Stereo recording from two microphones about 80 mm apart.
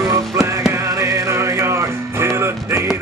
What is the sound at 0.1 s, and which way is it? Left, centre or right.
Music, right.